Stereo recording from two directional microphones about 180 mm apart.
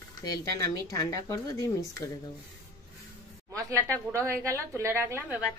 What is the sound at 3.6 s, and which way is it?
A woman's voice, 15° right (ahead or behind).